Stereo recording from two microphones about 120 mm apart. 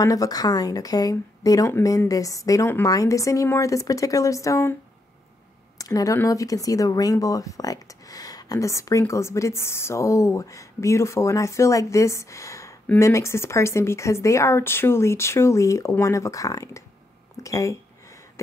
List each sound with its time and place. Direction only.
0.0 s speech: 30° left (ahead or behind)
5.8 s speech: 30° left (ahead or behind)